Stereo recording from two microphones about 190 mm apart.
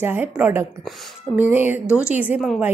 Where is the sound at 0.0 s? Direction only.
10° right (ahead or behind).